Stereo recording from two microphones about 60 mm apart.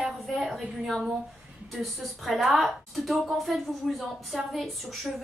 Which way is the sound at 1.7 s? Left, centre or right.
Centre.